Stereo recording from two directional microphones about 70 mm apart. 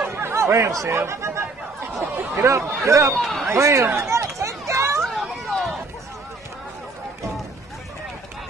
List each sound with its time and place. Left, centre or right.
0.1 s chatter: right
0.8 s speech: right
3.2 s speech: centre
3.5 s speech: right
3.9 s a sound: right
5.0 s a sound: centre